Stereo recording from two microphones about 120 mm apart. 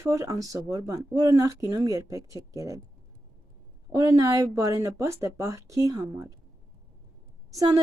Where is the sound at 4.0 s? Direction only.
30° right (ahead or behind).